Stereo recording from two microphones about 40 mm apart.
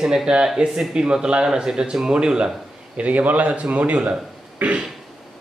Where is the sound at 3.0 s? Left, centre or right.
Right.